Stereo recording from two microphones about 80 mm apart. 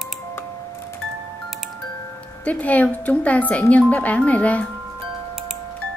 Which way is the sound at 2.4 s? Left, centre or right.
Centre.